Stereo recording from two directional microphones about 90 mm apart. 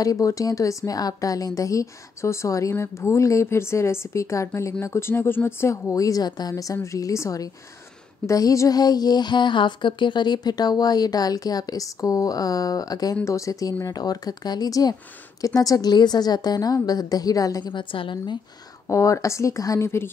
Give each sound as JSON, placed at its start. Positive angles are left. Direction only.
{"t": 0.0, "sound": "speech", "side_deg": 40}
{"t": 17.7, "sound": "a woman's voice", "side_deg": 65}
{"t": 18.9, "sound": "speech", "side_deg": 35}